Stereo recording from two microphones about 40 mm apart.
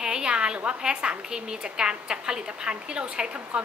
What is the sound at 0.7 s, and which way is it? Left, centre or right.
A woman's voice, right.